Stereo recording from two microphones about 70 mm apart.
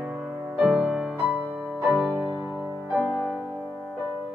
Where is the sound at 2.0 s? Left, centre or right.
Right.